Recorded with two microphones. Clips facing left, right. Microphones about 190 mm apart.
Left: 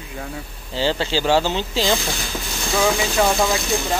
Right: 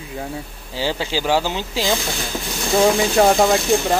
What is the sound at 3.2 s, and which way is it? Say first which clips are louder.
Speech: right 4 dB; 45° right (ahead or behind).